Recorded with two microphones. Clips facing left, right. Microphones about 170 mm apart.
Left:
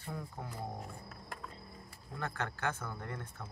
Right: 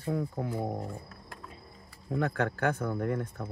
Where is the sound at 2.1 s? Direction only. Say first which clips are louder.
Right 10 dB; 65° right (ahead or behind).